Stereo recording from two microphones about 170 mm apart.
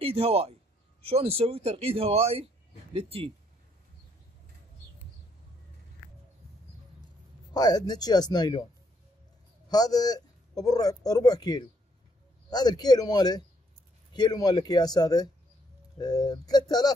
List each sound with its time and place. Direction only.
0.0 s speech: 35° right (ahead or behind)
7.5 s speech: 25° left (ahead or behind)
9.7 s speech: 25° left (ahead or behind)